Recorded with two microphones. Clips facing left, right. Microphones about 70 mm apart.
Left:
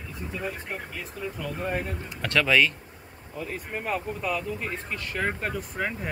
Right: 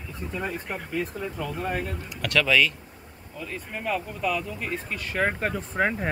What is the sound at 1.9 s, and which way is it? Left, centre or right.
Speech, left.